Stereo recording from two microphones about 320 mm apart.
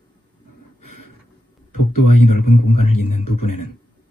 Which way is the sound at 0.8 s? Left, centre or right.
Left.